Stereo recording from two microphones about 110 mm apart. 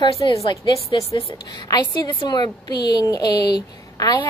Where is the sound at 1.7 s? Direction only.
45° left (ahead or behind).